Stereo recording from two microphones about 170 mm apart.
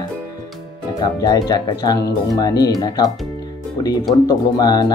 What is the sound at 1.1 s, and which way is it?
Speech, 25° left (ahead or behind).